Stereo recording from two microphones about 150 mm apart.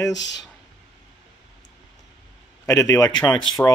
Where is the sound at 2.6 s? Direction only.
20° left (ahead or behind).